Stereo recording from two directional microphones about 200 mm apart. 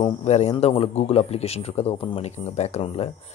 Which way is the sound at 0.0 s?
35° left (ahead or behind).